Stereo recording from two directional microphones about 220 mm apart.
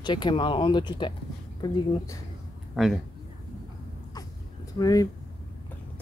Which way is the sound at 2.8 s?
Centre (ahead or behind).